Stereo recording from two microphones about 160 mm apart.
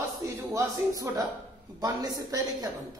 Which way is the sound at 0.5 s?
20° right (ahead or behind).